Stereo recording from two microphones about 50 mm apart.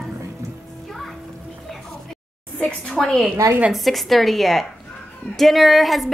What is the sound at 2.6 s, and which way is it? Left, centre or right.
Speech, centre.